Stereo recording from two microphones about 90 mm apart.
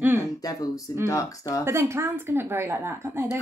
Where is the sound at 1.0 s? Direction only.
40° left (ahead or behind).